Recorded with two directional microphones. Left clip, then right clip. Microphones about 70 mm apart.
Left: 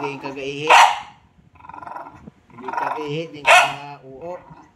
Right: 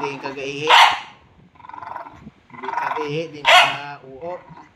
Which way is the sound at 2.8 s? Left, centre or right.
Centre.